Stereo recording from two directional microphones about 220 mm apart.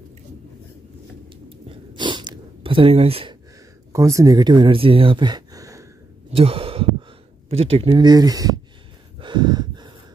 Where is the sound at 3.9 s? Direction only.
15° right (ahead or behind).